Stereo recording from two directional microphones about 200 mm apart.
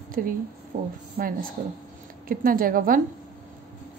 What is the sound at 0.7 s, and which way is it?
Speech, 35° right (ahead or behind).